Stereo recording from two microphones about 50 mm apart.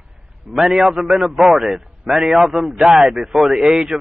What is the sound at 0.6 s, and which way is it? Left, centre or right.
A man's voice, centre.